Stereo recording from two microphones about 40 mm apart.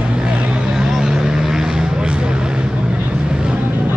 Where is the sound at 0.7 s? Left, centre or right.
Centre.